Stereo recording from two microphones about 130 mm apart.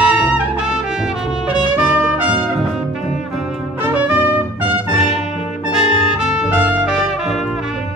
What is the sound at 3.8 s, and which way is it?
Trumpet, 15° right (ahead or behind).